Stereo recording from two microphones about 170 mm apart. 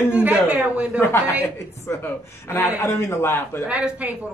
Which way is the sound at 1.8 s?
15° left (ahead or behind).